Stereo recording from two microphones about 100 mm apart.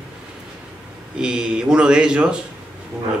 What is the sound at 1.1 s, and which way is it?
Speech, 10° right (ahead or behind).